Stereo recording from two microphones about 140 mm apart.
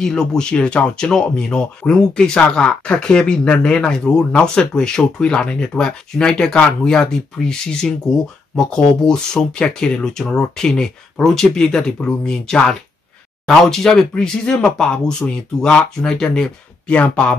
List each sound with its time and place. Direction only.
0.0 s speech: 5° left (ahead or behind)